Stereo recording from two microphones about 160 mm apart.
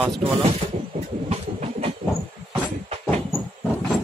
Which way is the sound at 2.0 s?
55° right (ahead or behind).